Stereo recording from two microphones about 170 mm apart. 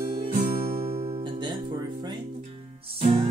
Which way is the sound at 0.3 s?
60° right (ahead or behind).